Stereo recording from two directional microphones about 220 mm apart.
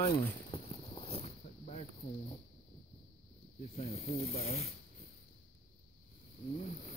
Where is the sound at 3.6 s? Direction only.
30° left (ahead or behind).